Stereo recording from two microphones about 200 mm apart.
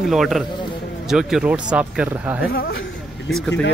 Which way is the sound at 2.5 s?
50° left (ahead or behind).